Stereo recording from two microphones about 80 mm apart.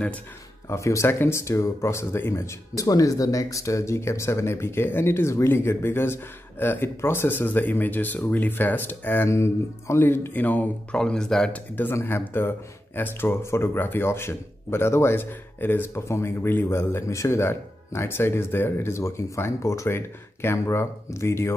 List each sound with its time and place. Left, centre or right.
0.7 s speech: left
9.3 s speech: left
11.0 s speech: centre
11.5 s speech: left